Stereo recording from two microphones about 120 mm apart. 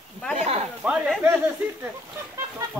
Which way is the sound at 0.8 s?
5° right (ahead or behind).